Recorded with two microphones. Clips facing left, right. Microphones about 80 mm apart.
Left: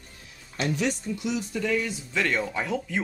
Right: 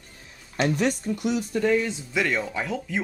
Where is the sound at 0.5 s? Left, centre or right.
Right.